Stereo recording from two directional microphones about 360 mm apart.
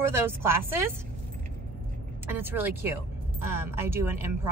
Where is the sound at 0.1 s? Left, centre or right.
Centre.